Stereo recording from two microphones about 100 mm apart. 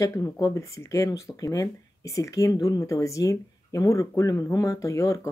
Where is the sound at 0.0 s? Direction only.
30° left (ahead or behind).